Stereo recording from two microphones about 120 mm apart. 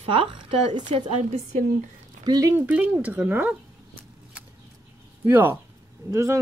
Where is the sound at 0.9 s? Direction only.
55° right (ahead or behind).